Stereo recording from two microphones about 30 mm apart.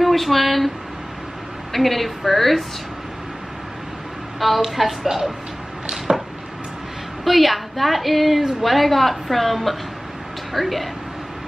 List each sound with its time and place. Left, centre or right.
0.0 s speech: centre
1.7 s a woman's voice: centre
4.4 s a woman's voice: centre
6.1 s a sound: right
7.2 s a woman's voice: centre